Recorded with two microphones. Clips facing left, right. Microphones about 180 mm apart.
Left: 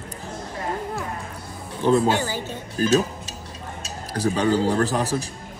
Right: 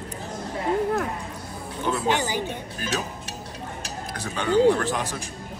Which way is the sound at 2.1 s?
15° right (ahead or behind).